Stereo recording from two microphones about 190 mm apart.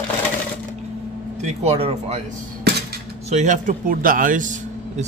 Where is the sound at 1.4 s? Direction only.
30° right (ahead or behind).